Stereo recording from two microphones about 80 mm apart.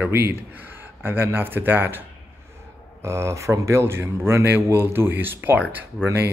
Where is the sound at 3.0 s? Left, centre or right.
Right.